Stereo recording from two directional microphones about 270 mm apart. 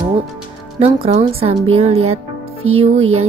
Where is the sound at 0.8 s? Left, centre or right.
Right.